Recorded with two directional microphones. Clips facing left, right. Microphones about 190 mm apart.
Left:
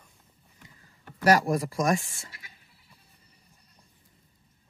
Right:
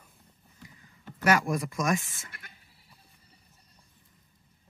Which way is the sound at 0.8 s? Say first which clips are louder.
Left 3 dB; 35° left (ahead or behind).